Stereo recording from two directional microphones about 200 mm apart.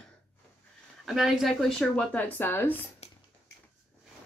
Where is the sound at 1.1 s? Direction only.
Centre (ahead or behind).